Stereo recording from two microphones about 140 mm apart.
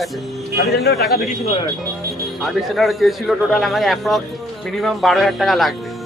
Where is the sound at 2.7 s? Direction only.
Centre (ahead or behind).